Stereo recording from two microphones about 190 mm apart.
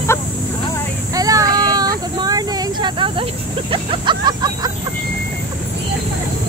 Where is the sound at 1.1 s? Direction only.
20° right (ahead or behind).